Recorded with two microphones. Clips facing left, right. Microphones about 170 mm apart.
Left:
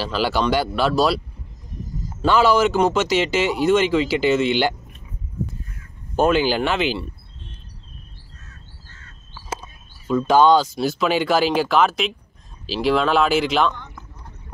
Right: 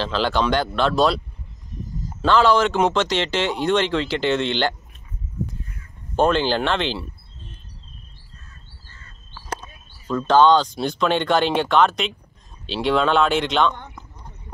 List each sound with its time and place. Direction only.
0.0 s a man's voice: 5° left (ahead or behind)
6.1 s a man's voice: 5° left (ahead or behind)
8.5 s bird: 80° left
9.3 s speech: 10° left (ahead or behind)